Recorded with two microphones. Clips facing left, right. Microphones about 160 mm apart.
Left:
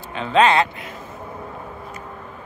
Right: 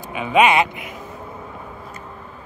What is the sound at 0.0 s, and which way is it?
Speech, 10° right (ahead or behind).